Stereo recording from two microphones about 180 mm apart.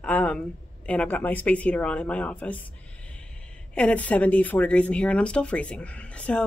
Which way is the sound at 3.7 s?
5° left (ahead or behind).